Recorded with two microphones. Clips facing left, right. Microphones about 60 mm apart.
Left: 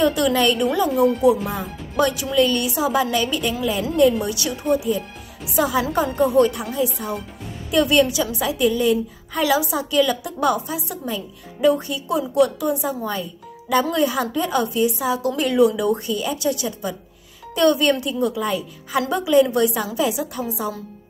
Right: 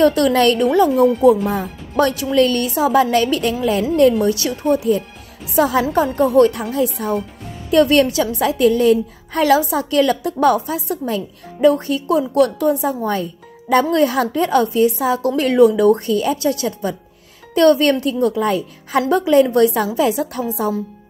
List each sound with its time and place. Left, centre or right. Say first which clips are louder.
0.0 s a woman's voice: right 5 dB; right
0.7 s a woman's voice: right 5 dB; right
3.9 s a woman's voice: right 3 dB; right
5.7 s a woman's voice: right 4 dB; right